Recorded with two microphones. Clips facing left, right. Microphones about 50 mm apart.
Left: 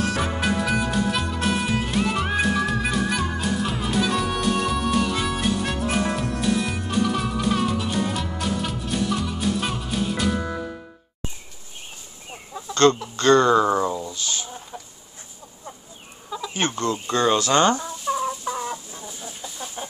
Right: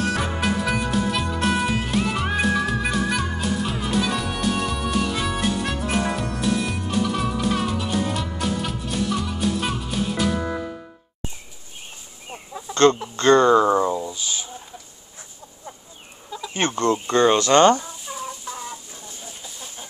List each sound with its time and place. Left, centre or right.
0.0 s music: centre
12.7 s a sound: right
16.3 s chicken: centre
16.5 s speech: right
18.0 s chicken: centre
18.4 s chicken: centre